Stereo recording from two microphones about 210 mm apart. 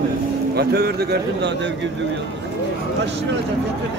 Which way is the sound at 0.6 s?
50° right (ahead or behind).